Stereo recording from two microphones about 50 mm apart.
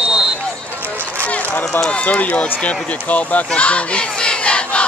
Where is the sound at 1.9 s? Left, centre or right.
Left.